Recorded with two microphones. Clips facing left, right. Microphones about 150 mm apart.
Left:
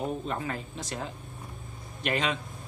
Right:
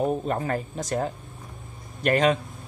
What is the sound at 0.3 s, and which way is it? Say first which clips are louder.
Speech: right 6 dB; 45° right (ahead or behind).